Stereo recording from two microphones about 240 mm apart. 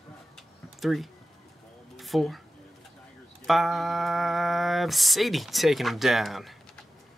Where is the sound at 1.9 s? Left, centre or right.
Centre.